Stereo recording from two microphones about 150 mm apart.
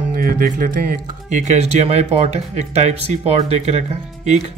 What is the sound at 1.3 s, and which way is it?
Speech, 50° right (ahead or behind).